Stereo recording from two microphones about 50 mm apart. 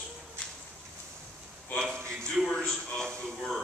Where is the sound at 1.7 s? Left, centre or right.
Centre.